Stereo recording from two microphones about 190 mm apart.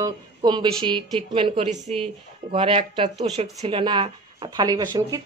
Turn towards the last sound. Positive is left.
turn(degrees=-20)  # may be behind; listen again after turning